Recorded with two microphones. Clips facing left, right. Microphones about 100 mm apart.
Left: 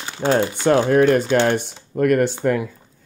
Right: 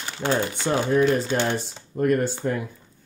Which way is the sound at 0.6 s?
65° left (ahead or behind).